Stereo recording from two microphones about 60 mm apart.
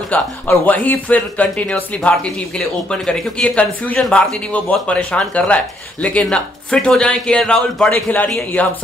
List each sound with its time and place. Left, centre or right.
0.1 s speech: left
1.7 s speech: centre
7.9 s speech: left